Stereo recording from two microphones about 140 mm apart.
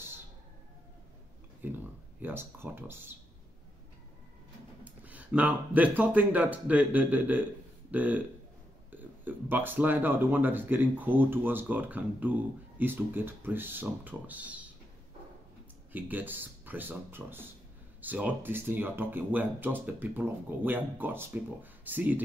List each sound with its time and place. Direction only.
1.6 s speech: 15° right (ahead or behind)
4.8 s speech: 10° right (ahead or behind)
15.9 s speech: 10° right (ahead or behind)